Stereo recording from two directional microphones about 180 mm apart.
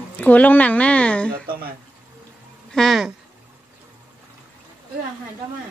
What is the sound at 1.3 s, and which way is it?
Speech, 55° right (ahead or behind).